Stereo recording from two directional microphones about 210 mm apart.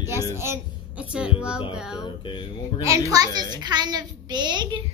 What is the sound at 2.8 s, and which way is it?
A child's voice, 15° right (ahead or behind).